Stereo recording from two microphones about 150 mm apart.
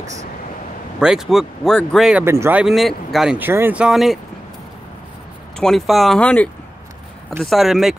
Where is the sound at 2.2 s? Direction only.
15° right (ahead or behind).